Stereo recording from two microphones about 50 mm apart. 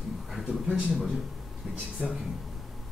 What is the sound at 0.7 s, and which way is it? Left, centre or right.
Speech, centre.